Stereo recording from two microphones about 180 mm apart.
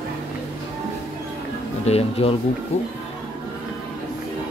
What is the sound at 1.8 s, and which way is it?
Speech, 35° left (ahead or behind).